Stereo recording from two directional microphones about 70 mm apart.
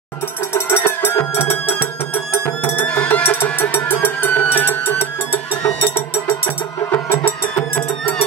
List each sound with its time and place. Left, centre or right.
0.5 s music: left
2.9 s music: left